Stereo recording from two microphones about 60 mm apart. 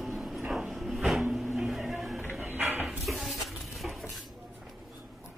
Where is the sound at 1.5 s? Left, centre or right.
Centre.